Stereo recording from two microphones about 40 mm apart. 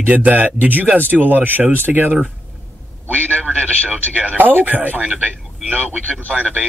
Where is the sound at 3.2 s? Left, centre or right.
Left.